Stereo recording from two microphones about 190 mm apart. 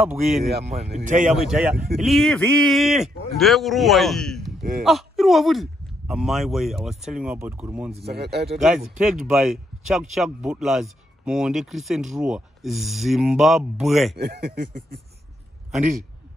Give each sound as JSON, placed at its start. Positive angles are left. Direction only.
{"t": 0.0, "sound": "speech", "side_deg": 0}
{"t": 0.7, "sound": "speech", "side_deg": -35}
{"t": 1.3, "sound": "speech", "side_deg": -5}
{"t": 8.1, "sound": "speech", "side_deg": -60}
{"t": 8.5, "sound": "speech", "side_deg": 0}
{"t": 14.1, "sound": "speech", "side_deg": -55}